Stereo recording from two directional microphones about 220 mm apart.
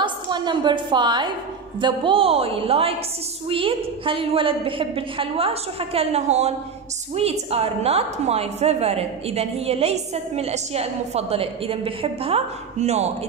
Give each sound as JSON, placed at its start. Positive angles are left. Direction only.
{"t": 0.0, "sound": "a woman's voice", "side_deg": -20}